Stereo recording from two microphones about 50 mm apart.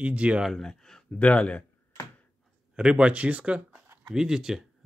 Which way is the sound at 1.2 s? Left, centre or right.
Left.